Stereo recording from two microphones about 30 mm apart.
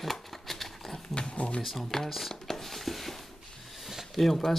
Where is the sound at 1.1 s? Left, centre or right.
Left.